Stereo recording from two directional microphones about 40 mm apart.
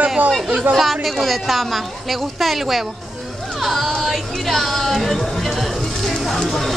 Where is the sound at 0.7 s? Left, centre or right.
Centre.